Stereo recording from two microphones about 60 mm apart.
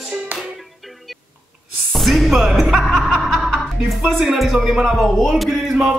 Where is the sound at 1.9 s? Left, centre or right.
Centre.